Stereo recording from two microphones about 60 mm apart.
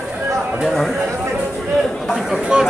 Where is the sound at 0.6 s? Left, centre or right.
Centre.